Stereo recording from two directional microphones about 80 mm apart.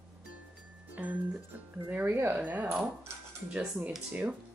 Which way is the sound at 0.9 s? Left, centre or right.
Centre.